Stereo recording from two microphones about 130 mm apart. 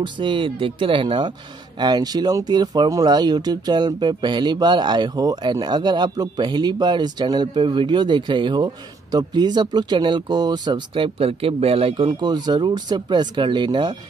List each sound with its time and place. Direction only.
0.0 s speech: 40° right (ahead or behind)